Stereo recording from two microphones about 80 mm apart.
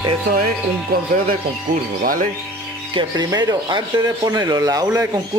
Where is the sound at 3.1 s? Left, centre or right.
Right.